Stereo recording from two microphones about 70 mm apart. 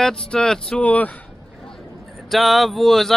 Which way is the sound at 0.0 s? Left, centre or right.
Centre.